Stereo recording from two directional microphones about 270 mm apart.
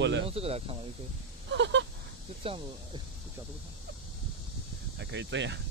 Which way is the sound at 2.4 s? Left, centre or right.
Centre.